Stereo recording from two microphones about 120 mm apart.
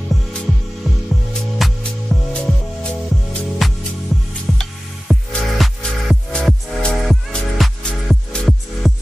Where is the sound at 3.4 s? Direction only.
Centre (ahead or behind).